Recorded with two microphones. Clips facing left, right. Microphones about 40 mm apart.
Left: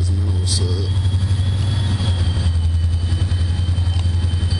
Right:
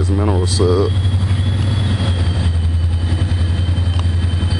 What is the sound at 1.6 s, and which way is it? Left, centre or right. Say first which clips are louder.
Vehicle: right 3 dB; right.